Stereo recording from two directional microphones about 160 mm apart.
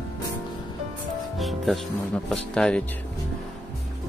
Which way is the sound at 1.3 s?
Centre (ahead or behind).